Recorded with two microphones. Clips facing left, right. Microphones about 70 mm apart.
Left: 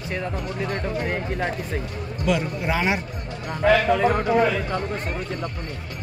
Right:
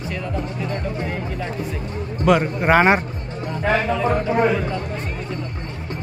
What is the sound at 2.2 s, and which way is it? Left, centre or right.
Speech, right.